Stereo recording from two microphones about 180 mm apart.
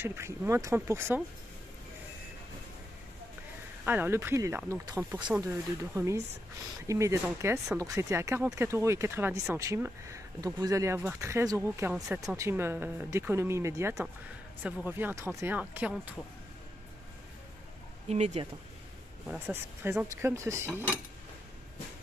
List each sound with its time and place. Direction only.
0.0 s speech: 15° right (ahead or behind)
3.8 s speech: 10° right (ahead or behind)
7.2 s speech: 5° right (ahead or behind)
7.7 s speech: 15° right (ahead or behind)
18.0 s speech: 35° right (ahead or behind)
19.2 s speech: 10° right (ahead or behind)